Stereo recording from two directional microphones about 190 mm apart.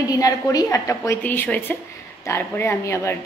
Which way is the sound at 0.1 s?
20° left (ahead or behind).